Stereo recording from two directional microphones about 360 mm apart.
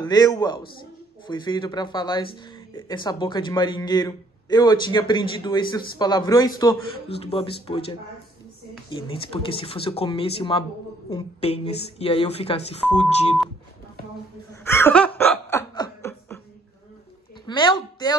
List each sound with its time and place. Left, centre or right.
0.0 s speech: centre
9.1 s speech: centre
14.5 s laughter: centre
17.5 s a sound: centre